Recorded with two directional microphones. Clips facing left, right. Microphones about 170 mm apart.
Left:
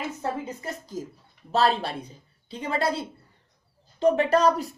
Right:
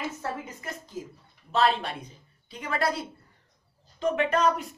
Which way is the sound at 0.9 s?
40° left (ahead or behind).